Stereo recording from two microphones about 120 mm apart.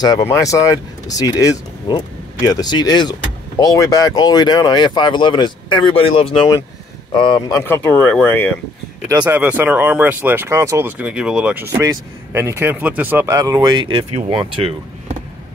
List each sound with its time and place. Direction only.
0.2 s a man's voice: 25° left (ahead or behind)
7.6 s speech: 15° left (ahead or behind)
9.2 s speech: 15° right (ahead or behind)
11.6 s speech: 25° right (ahead or behind)
13.3 s speech: 30° right (ahead or behind); by 15.1 s 50° right (ahead or behind)